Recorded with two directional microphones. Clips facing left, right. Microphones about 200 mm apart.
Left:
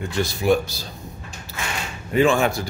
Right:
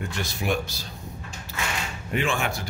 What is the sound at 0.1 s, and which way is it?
Speech, 35° left (ahead or behind).